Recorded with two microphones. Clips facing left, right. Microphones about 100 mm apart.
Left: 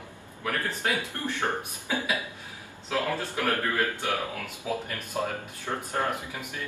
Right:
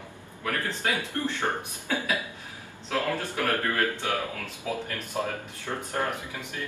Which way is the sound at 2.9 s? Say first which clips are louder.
Even; 15° left (ahead or behind).